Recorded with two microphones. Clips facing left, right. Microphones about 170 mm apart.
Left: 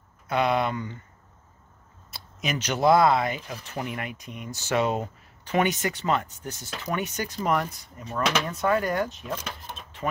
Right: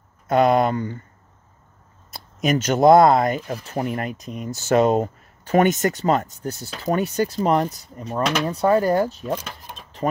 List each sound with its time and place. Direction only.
0.3 s speech: 45° right (ahead or behind)
2.0 s speech: 45° right (ahead or behind)
9.4 s a sound: centre (ahead or behind)